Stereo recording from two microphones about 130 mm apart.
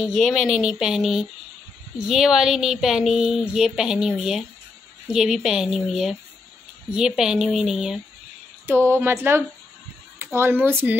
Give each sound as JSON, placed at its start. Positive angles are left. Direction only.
{"t": 0.0, "sound": "speech", "side_deg": 0}
{"t": 8.6, "sound": "speech", "side_deg": -20}